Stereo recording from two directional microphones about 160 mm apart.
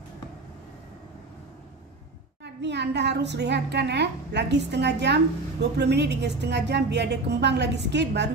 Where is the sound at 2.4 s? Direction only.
90° right.